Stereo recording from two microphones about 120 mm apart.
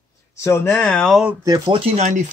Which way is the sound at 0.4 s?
25° left (ahead or behind).